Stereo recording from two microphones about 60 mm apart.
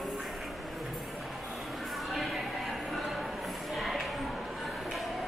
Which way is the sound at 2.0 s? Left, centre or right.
Centre.